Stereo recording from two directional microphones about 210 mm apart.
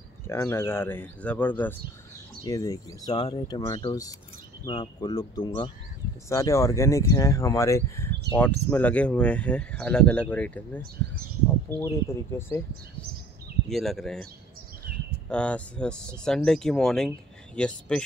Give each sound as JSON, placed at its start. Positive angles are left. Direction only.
{"t": 0.3, "sound": "speech", "side_deg": 10}
{"t": 13.7, "sound": "speech", "side_deg": 0}
{"t": 15.2, "sound": "speech", "side_deg": 5}